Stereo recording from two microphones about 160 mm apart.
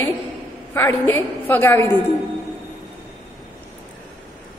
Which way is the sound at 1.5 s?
10° left (ahead or behind).